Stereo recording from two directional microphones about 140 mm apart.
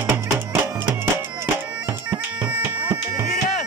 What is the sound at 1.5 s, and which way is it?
Bagpipes, 15° right (ahead or behind).